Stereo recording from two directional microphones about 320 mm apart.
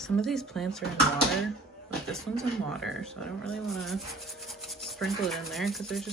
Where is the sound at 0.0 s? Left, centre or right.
Centre.